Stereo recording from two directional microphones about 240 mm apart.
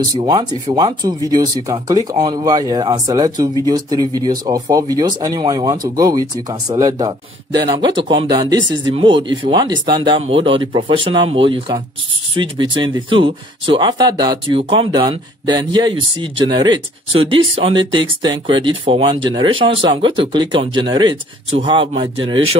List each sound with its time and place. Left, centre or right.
0.1 s speech: centre